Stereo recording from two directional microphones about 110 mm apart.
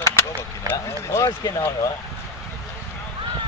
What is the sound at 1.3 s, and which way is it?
Speech, 35° left (ahead or behind).